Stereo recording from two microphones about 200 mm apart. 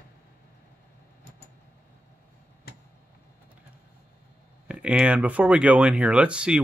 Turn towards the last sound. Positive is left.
turn(degrees=-5)  # may be behind; listen again after turning